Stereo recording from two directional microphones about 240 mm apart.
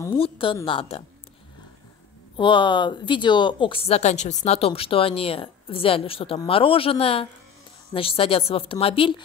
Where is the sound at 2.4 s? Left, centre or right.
Centre.